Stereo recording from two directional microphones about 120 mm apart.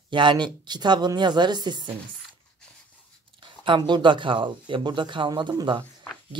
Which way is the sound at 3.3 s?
45° right (ahead or behind).